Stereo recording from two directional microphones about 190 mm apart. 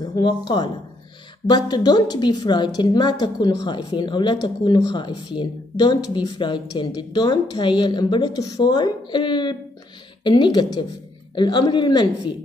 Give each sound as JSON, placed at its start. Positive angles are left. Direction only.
{"t": 0.0, "sound": "a woman's voice", "side_deg": 20}